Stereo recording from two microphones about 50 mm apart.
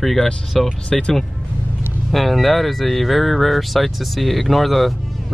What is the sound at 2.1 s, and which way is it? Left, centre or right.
Speech, centre.